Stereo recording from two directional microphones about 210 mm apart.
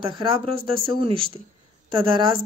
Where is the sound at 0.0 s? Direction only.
25° right (ahead or behind).